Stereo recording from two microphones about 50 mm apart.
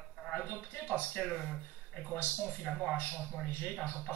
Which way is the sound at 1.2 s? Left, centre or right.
Centre.